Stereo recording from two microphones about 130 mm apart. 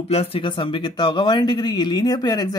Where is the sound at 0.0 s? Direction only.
50° left (ahead or behind).